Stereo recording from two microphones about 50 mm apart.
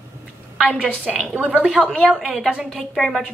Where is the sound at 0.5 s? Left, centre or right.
Centre.